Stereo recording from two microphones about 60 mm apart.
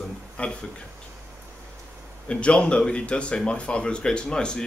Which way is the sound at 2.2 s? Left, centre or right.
Centre.